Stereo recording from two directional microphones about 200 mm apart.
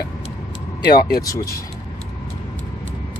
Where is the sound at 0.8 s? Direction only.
55° left (ahead or behind).